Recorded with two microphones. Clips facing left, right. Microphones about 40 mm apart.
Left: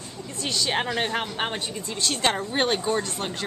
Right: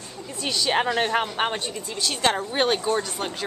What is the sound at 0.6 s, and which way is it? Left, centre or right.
A woman's voice, centre.